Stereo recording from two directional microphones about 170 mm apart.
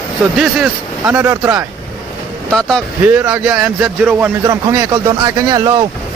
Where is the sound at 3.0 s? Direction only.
10° right (ahead or behind).